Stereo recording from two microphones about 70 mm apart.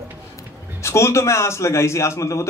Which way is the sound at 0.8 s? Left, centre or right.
Left.